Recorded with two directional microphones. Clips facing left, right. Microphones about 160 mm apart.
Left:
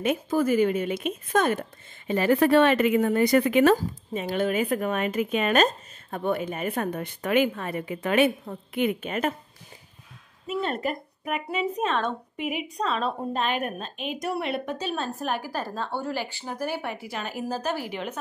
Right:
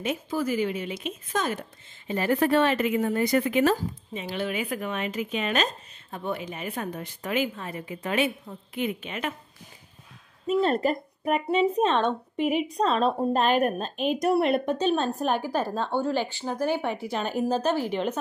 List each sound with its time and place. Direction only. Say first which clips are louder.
0.0 s a woman's voice: left 4 dB; 55° left (ahead or behind)
10.4 s speech: right 5 dB; 35° right (ahead or behind)
15.2 s a woman's voice: right 4 dB; 5° left (ahead or behind)